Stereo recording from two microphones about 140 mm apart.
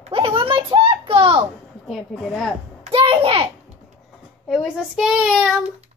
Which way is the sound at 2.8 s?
40° right (ahead or behind).